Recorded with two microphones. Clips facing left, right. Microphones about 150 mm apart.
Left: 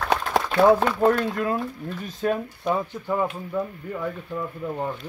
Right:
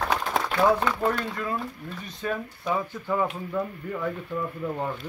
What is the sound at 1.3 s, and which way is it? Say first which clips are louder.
Speech: left 5 dB; 55° left (ahead or behind).